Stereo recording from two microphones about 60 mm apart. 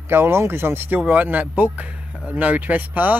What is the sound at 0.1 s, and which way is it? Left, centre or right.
Speech, right.